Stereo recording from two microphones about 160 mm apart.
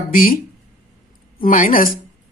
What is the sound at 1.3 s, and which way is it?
Speech, 60° left (ahead or behind).